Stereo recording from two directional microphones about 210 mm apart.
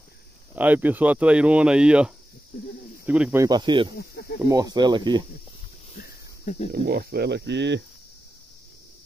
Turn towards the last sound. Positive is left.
turn(degrees=-55)  # may be behind; listen again after turning